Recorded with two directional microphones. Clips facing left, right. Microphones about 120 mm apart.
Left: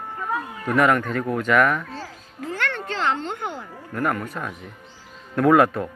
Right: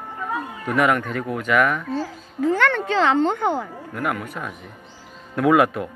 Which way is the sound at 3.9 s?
5° right (ahead or behind).